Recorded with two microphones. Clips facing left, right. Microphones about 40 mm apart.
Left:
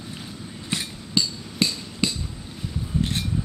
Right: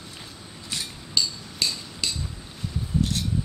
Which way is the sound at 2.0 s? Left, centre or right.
Left.